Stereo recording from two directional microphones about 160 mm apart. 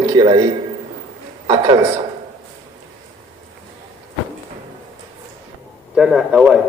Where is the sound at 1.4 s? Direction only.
25° right (ahead or behind).